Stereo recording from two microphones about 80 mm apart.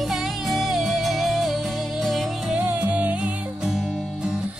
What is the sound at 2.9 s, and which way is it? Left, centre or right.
Music, centre.